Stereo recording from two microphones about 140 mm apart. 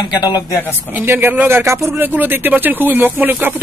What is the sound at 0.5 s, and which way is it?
Speech, 15° left (ahead or behind).